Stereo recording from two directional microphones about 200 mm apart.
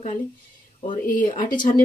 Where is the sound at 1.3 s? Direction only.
25° left (ahead or behind).